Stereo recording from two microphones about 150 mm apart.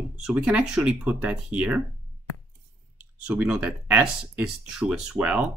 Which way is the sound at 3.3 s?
10° right (ahead or behind).